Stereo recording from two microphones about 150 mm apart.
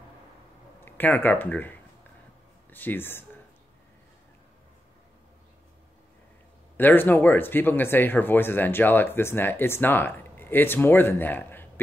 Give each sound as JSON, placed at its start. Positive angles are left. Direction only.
{"t": 0.8, "sound": "speech", "side_deg": 10}
{"t": 6.8, "sound": "speech", "side_deg": 15}